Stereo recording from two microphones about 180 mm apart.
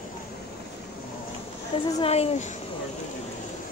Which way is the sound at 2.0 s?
35° left (ahead or behind).